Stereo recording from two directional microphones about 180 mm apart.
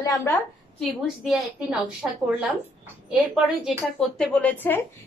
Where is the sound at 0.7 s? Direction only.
Centre (ahead or behind).